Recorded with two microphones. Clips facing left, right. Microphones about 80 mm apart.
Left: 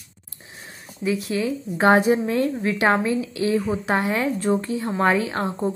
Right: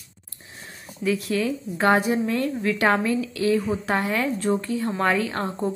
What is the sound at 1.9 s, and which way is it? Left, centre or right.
Speech, left.